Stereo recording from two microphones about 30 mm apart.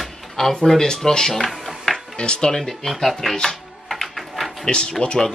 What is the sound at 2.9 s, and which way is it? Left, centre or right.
Speech, centre.